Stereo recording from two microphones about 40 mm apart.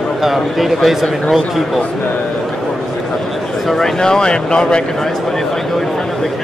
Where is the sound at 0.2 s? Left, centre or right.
Centre.